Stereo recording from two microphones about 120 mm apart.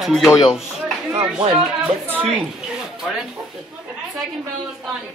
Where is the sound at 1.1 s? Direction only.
45° right (ahead or behind).